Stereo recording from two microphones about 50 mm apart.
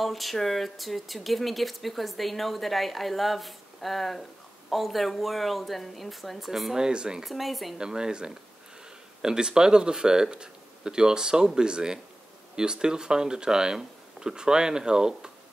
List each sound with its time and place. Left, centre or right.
0.0 s speech: centre
6.8 s speech: centre
7.2 s speech: centre
7.7 s speech: centre